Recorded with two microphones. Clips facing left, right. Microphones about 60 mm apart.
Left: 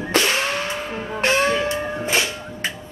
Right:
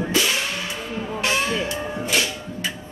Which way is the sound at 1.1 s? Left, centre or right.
Left.